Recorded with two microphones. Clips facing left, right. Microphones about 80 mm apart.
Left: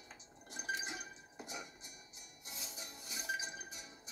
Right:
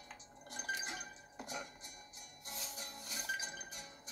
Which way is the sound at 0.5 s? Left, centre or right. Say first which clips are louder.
Even; centre.